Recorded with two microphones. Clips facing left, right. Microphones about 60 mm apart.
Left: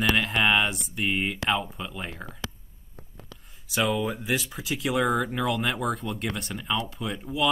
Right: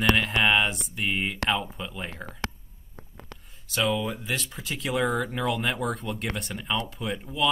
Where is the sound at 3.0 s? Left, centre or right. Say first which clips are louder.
Right 2 dB; right.